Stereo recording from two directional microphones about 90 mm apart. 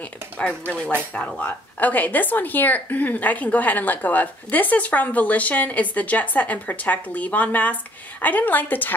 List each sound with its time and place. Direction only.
0.4 s a woman's voice: 10° left (ahead or behind)